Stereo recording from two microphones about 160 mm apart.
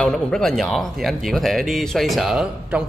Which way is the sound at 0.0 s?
5° left (ahead or behind).